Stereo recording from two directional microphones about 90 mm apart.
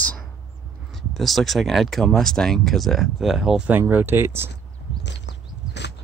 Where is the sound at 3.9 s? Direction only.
25° right (ahead or behind).